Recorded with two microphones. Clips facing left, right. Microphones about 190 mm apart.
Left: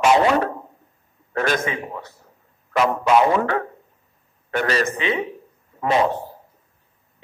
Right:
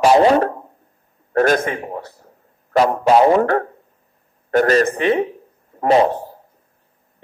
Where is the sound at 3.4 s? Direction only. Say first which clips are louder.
Right 5 dB; 50° right (ahead or behind).